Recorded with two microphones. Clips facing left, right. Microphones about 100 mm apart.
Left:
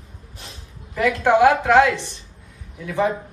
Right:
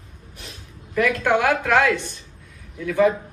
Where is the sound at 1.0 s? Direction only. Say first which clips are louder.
Left 4 dB; 25° left (ahead or behind).